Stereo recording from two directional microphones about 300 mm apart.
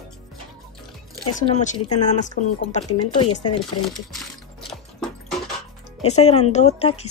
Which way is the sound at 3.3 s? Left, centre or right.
Left.